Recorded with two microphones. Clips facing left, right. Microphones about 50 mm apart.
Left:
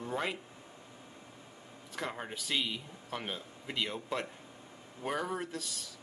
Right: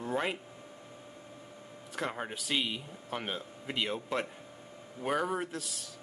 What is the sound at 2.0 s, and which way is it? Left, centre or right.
A man's voice, centre.